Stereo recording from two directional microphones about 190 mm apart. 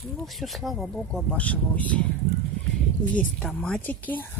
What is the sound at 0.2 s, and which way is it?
Speech, centre (ahead or behind).